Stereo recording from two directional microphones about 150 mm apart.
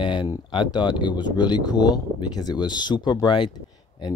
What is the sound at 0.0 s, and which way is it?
Speech, 35° left (ahead or behind).